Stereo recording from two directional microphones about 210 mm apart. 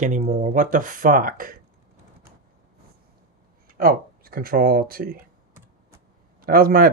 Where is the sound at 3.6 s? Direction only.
45° right (ahead or behind).